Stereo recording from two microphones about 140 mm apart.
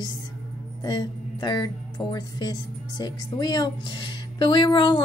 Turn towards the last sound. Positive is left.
turn(degrees=30)  # may be behind; listen again after turning